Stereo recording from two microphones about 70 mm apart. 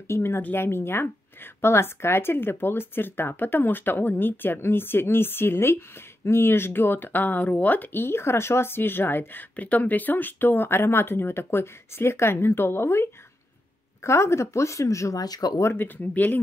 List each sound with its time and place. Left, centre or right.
0.1 s a woman's voice: left
15.6 s a woman's voice: left
16.1 s speech: left